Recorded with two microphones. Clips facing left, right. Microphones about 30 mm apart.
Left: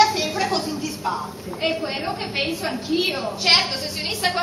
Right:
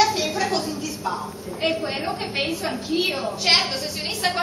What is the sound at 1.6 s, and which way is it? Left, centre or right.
A woman's voice, centre.